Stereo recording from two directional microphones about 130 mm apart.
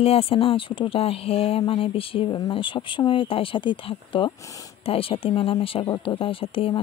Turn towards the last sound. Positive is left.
turn(degrees=45)  # may be behind; listen again after turning